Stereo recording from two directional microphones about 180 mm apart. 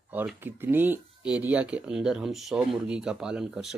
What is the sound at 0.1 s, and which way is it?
Speech, 10° right (ahead or behind).